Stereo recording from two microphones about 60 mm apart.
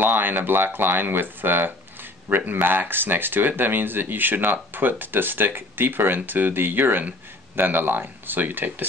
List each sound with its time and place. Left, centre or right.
0.0 s speech: right